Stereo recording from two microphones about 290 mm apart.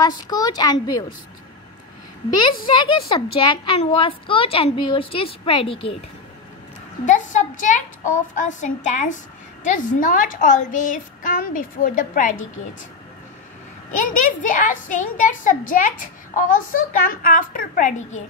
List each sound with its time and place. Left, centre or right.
0.0 s a woman's voice: centre
2.6 s a woman's voice: centre
7.1 s a woman's voice: left
13.9 s a woman's voice: left